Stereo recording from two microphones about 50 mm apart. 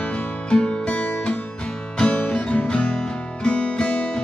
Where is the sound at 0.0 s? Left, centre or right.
Left.